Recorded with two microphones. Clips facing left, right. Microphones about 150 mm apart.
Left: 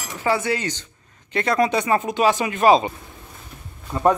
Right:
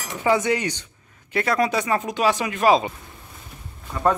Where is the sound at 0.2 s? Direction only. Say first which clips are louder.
Right 2 dB; 20° right (ahead or behind).